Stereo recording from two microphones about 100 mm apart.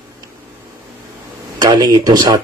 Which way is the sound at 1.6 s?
40° right (ahead or behind).